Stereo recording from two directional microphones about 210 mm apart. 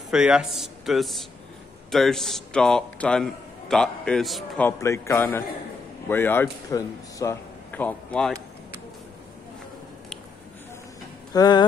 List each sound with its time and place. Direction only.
0.1 s a man's voice: 5° right (ahead or behind)
4.6 s a man's voice: 15° left (ahead or behind)
11.3 s speech: 20° left (ahead or behind)